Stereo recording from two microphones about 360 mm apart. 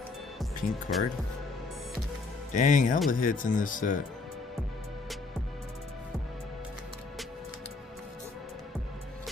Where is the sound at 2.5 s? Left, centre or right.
Left.